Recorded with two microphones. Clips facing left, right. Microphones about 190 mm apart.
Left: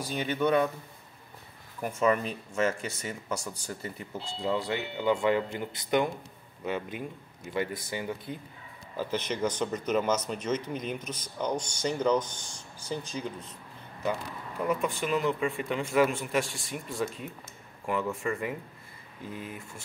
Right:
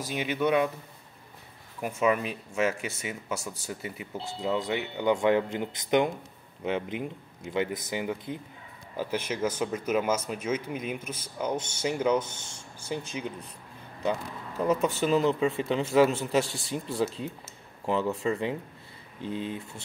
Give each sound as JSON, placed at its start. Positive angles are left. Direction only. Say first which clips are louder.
{"t": 0.1, "sound": "speech", "louder": "even", "side_deg": -5}
{"t": 1.8, "sound": "speech", "louder": "even", "side_deg": -10}
{"t": 15.0, "sound": "speech", "louder": "right 4 dB", "side_deg": -30}